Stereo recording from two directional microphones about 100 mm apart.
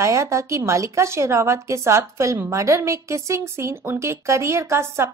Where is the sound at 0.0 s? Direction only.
30° right (ahead or behind).